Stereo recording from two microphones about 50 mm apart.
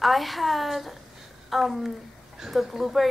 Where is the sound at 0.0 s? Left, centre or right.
Centre.